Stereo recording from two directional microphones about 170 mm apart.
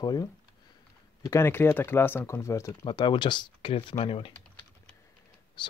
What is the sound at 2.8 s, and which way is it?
Speech, 30° left (ahead or behind).